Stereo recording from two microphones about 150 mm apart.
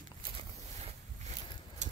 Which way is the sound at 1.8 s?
50° right (ahead or behind).